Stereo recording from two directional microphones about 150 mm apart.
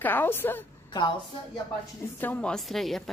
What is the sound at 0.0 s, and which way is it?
Speech, 15° left (ahead or behind).